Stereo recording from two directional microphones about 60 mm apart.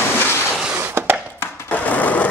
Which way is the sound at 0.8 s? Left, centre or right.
Right.